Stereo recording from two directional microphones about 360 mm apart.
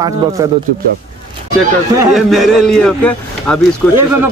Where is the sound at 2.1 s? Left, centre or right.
Centre.